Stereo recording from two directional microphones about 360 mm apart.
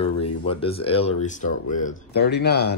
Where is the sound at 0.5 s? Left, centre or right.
Centre.